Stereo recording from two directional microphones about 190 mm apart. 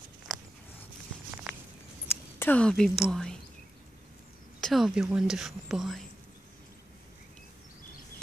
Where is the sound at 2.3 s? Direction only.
10° left (ahead or behind).